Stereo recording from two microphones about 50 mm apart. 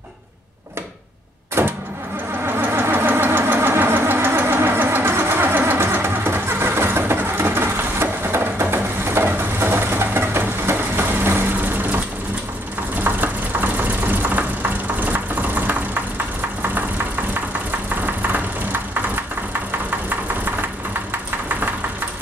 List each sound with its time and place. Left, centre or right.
1.6 s vehicle: right
13.0 s a sound: right
17.3 s vehicle: right